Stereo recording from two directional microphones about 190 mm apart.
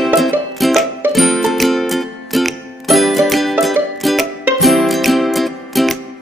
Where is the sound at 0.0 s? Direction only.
Centre (ahead or behind).